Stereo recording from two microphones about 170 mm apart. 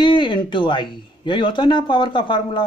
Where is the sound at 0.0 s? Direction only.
30° left (ahead or behind).